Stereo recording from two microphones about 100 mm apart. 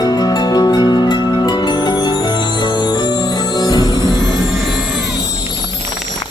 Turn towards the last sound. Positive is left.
turn(degrees=45)  # may be behind; listen again after turning